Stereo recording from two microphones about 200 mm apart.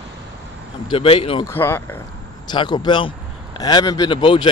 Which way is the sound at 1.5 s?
10° left (ahead or behind).